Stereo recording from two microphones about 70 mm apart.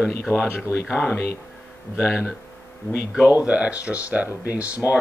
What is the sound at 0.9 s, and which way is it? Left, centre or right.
Speech, left.